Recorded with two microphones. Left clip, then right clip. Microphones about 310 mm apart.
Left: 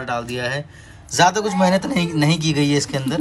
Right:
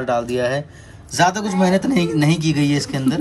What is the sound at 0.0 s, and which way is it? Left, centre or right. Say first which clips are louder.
Speech: right 5 dB; centre.